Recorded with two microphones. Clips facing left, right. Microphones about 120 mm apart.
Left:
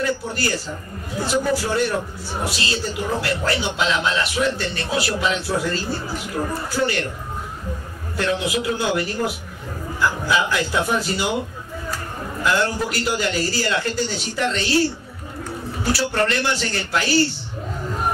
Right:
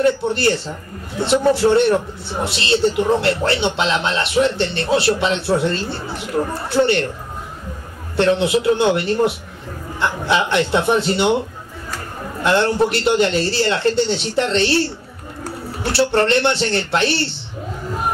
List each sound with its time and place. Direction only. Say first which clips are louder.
0.0 s speech: right 7 dB; 25° right (ahead or behind)
8.2 s speech: right 7 dB; 25° right (ahead or behind)
12.4 s speech: right 5 dB; 25° right (ahead or behind)
15.9 s speech: right 5 dB; 30° right (ahead or behind)